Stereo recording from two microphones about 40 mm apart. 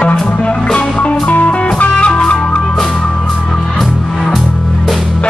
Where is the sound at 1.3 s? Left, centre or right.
Left.